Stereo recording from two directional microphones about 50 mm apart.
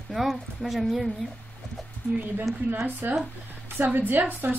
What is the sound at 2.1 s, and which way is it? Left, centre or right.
Speech, right.